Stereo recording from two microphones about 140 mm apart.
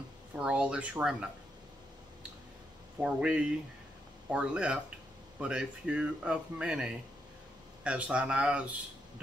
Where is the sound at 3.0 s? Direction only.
5° right (ahead or behind).